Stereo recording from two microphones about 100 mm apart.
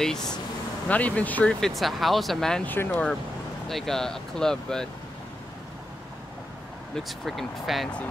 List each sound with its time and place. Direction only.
0.0 s speech: 5° left (ahead or behind)
1.6 s speech: centre (ahead or behind)
2.6 s speech: 20° left (ahead or behind)
3.6 s speech: 5° left (ahead or behind)
7.0 s speech: centre (ahead or behind)